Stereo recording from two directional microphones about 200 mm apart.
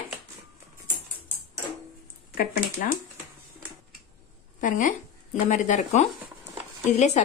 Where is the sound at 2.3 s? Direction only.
45° left (ahead or behind).